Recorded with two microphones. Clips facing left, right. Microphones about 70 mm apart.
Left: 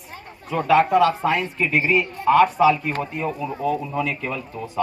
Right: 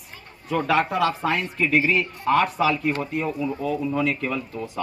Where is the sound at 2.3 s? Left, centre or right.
Centre.